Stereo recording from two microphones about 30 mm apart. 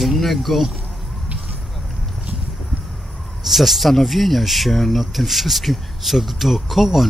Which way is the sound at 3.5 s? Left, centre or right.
Centre.